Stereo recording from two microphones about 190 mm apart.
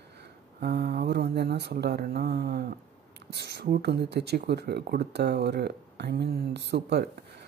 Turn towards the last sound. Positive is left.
turn(degrees=-60)  # may be behind; listen again after turning